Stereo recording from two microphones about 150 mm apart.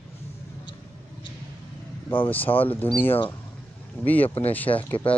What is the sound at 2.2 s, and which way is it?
Speech, 10° left (ahead or behind).